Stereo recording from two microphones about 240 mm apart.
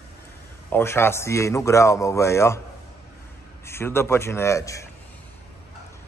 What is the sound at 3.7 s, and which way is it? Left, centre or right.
A man's voice, centre.